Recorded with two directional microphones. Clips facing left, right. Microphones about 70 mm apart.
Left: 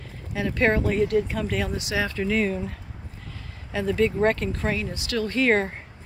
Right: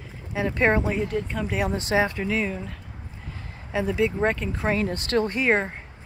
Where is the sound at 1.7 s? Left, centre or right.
Right.